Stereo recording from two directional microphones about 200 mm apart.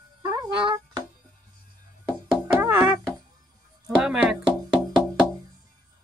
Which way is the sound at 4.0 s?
5° right (ahead or behind).